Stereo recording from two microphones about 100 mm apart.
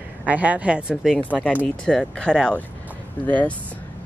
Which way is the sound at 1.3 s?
10° left (ahead or behind).